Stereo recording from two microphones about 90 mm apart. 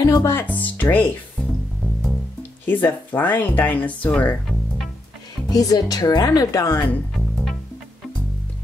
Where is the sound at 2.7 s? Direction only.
20° left (ahead or behind).